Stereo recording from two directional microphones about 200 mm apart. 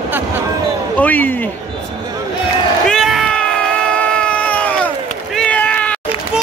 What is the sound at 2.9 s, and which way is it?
Cat, centre (ahead or behind).